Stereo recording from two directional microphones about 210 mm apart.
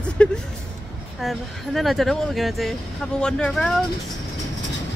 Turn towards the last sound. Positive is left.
turn(degrees=0)  # may be behind; listen again after turning